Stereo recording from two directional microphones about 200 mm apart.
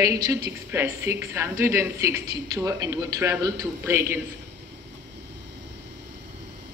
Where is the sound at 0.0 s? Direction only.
15° right (ahead or behind).